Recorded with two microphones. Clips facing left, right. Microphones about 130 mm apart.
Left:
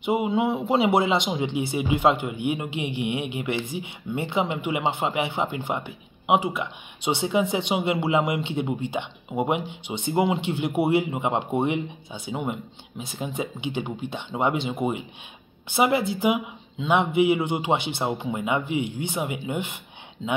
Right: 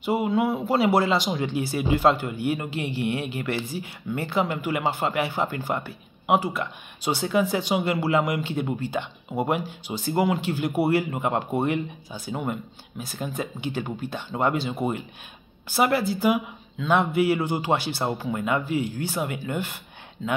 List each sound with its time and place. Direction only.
0.0 s speech: 20° left (ahead or behind)